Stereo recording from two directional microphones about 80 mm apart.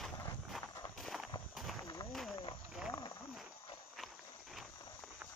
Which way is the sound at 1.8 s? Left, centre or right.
Left.